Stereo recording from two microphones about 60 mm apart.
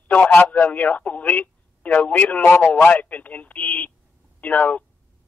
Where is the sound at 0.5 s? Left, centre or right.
Left.